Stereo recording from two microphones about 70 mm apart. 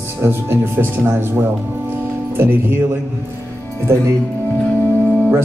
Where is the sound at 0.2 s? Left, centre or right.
Right.